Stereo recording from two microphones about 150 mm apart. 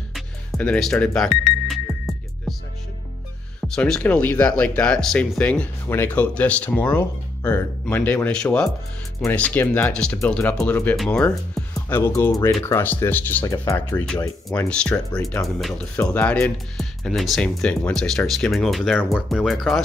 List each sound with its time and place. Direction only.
0.6 s music: 5° left (ahead or behind)
3.6 s speech: 5° left (ahead or behind)
11.7 s speech: 15° left (ahead or behind)
14.7 s speech: 5° left (ahead or behind)